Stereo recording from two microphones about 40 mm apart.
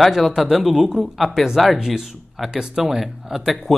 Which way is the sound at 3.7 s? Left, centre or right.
Centre.